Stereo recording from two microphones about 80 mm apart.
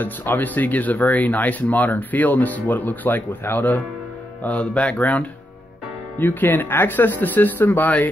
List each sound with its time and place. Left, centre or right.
0.0 s speech: left